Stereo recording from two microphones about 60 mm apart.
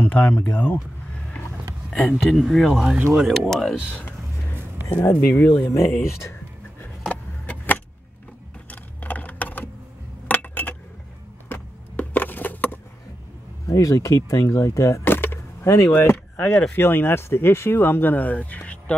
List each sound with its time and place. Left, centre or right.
0.0 s speech: left
1.9 s speech: centre
5.1 s speech: left
7.1 s vehicle: left
8.6 s keys jangling: left
10.2 s a sound: left
13.7 s speech: left
15.0 s a sound: left
15.6 s speech: left
16.0 s speech: left